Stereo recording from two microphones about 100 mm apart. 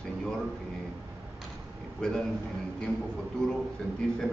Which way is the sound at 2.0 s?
10° left (ahead or behind).